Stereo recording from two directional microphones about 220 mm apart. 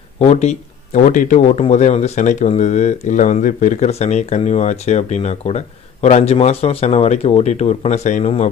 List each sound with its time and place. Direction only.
0.2 s speech: 30° left (ahead or behind)